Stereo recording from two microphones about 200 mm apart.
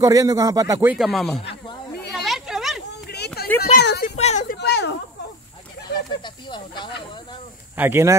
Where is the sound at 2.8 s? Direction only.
55° left (ahead or behind).